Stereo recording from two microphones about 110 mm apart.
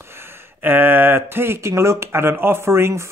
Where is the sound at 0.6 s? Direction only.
20° right (ahead or behind).